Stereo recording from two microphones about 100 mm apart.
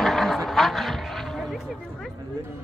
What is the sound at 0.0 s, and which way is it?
Vehicle, centre (ahead or behind).